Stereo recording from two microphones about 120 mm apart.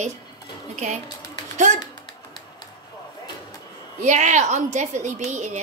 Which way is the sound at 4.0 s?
85° right.